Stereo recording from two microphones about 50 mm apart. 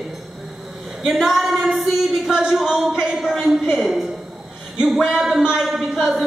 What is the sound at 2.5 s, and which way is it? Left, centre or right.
Speech, centre.